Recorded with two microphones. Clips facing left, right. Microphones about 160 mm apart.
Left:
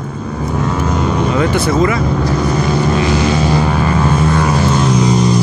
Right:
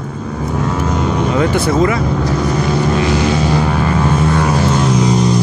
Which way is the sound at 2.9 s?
55° right (ahead or behind).